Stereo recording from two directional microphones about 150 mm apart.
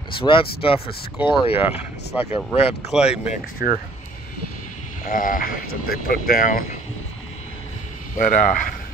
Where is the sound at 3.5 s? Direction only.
65° left (ahead or behind).